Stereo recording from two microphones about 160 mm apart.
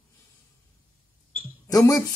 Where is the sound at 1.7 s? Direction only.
20° left (ahead or behind).